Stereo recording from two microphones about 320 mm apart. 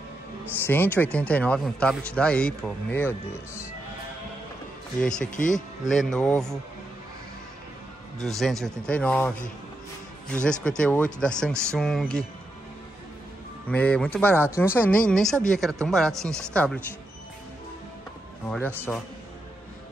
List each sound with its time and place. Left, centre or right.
0.7 s a man's voice: centre
5.3 s speech: left
5.9 s a man's voice: centre
8.2 s a man's voice: centre
13.7 s a man's voice: centre
18.5 s a man's voice: centre